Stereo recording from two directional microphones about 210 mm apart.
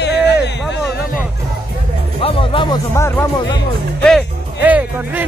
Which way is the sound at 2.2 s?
25° left (ahead or behind).